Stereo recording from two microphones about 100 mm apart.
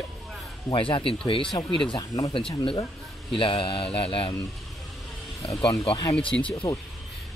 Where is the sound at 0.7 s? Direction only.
60° left (ahead or behind).